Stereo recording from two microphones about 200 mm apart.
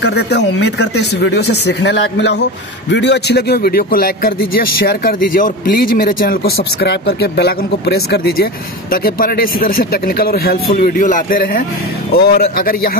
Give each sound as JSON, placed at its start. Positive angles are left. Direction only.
{"t": 0.0, "sound": "a man's voice", "side_deg": 60}